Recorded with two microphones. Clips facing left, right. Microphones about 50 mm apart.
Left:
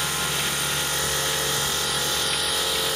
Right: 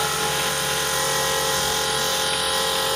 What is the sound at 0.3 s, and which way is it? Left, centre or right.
Helicopter, right.